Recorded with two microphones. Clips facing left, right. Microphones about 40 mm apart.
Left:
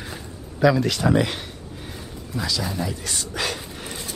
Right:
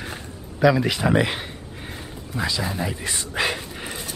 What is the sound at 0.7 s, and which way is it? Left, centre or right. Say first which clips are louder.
Speech: even; centre.